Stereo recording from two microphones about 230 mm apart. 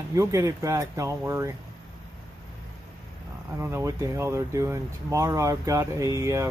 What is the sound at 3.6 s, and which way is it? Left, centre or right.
Speech, centre.